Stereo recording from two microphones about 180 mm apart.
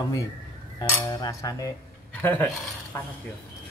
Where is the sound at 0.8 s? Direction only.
20° left (ahead or behind).